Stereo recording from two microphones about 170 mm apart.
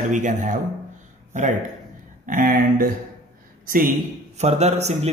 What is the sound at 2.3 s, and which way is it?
A man's voice, 55° right (ahead or behind).